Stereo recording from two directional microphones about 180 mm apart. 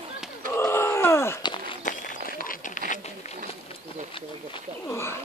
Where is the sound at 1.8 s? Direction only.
50° left (ahead or behind).